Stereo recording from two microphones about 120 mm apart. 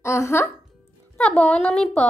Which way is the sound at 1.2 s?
10° left (ahead or behind).